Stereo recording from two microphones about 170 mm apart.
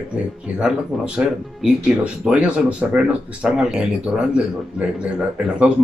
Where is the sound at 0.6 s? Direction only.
5° right (ahead or behind).